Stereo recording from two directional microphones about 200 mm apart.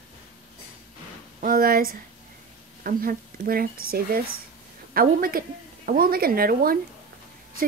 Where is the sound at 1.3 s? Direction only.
45° right (ahead or behind).